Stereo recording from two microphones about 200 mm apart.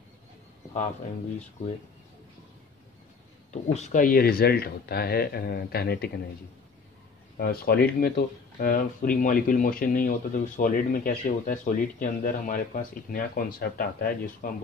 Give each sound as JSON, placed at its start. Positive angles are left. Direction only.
{"t": 3.7, "sound": "speech", "side_deg": 35}
{"t": 7.3, "sound": "speech", "side_deg": 50}